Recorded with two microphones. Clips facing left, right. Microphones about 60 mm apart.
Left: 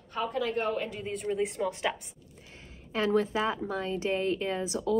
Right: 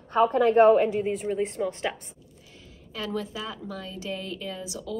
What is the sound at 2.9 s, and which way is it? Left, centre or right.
A woman's voice, left.